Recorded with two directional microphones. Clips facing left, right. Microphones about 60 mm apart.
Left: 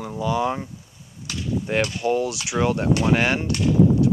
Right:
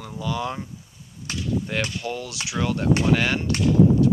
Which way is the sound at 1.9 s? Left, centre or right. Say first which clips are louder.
Left 8 dB; centre.